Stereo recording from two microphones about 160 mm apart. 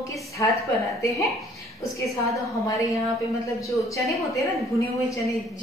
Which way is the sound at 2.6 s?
20° left (ahead or behind).